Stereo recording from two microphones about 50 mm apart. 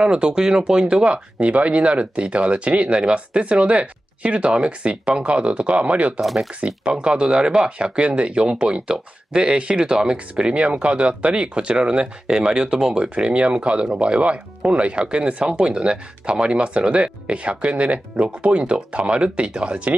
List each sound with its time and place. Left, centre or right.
0.0 s speech: centre